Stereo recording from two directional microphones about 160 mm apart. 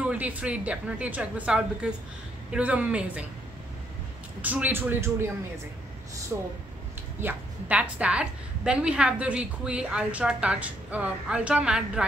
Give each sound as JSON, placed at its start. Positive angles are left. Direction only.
{"t": 0.0, "sound": "a woman's voice", "side_deg": -10}
{"t": 4.4, "sound": "a woman's voice", "side_deg": -10}
{"t": 6.3, "sound": "a woman's voice", "side_deg": -15}